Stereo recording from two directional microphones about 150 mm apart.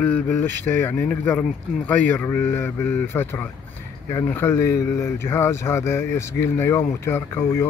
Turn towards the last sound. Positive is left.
turn(degrees=15)  # may be behind; listen again after turning